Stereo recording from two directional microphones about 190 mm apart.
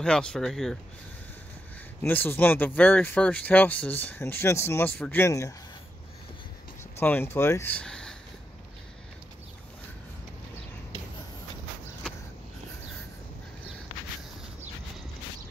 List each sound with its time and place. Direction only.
0.0 s speech: 5° left (ahead or behind)
2.0 s speech: 10° left (ahead or behind)
7.0 s speech: 10° left (ahead or behind)